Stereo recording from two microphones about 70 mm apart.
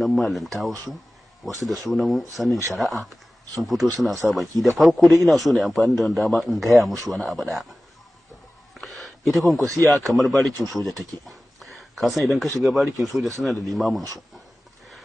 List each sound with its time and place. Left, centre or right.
0.0 s speech: centre
1.5 s speech: right
1.9 s a man's voice: centre
8.8 s a sound: centre
10.0 s a man's voice: centre